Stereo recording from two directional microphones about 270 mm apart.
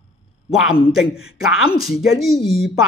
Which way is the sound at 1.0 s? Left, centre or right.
Centre.